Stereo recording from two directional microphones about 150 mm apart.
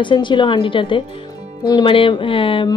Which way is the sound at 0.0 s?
30° left (ahead or behind).